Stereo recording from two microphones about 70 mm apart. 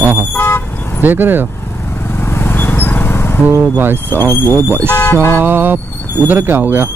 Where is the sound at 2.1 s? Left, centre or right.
Left.